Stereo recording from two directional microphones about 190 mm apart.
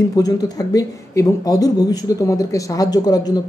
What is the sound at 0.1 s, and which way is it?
Speech, 20° left (ahead or behind).